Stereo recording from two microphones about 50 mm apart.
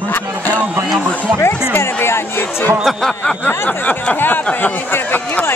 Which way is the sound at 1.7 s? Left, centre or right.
Left.